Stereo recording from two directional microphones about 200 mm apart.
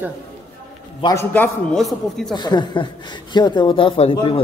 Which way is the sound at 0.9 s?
20° left (ahead or behind).